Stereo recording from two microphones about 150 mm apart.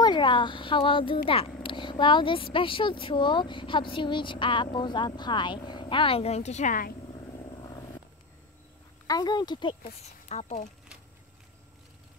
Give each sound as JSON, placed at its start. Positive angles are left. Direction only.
{"t": 0.0, "sound": "a child's voice", "side_deg": 30}
{"t": 9.0, "sound": "speech", "side_deg": 25}
{"t": 10.2, "sound": "speech", "side_deg": 50}